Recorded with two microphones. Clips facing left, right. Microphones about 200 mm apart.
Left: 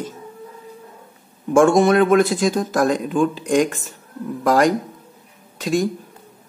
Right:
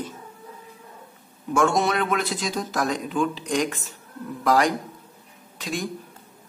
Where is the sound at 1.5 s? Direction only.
50° left (ahead or behind).